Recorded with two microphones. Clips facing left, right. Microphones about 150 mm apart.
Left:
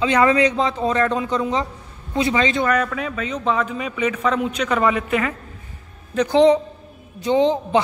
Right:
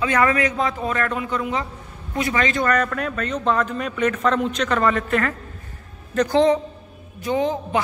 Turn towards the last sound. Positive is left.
turn(degrees=25)  # may be behind; listen again after turning